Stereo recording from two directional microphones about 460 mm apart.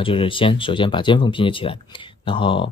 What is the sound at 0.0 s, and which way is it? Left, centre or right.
Speech, centre.